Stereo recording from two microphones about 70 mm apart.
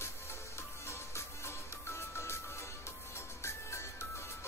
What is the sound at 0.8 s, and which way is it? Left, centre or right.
Music, left.